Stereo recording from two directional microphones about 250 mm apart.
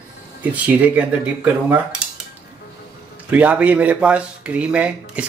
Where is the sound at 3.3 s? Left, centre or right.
Centre.